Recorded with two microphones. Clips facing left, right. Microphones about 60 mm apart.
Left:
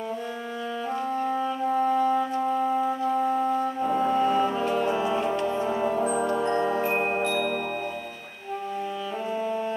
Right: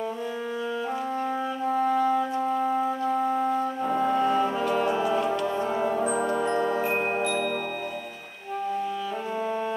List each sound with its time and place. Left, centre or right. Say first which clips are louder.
1.2 s music: left 2 dB; centre
5.2 s music: even; left
5.6 s music: even; centre